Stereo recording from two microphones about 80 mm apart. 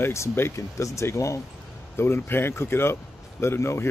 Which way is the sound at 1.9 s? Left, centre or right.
Left.